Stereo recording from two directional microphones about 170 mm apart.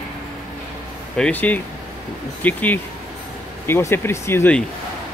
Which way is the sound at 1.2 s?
10° left (ahead or behind).